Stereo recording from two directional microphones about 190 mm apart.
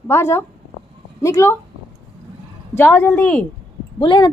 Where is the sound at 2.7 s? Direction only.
10° left (ahead or behind).